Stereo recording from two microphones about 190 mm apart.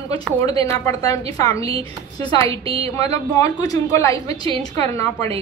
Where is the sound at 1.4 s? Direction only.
20° left (ahead or behind).